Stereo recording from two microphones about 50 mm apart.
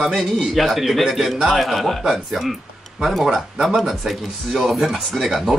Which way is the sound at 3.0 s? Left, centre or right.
Centre.